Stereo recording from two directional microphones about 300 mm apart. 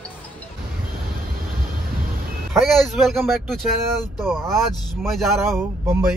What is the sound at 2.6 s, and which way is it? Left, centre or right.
Speech, centre.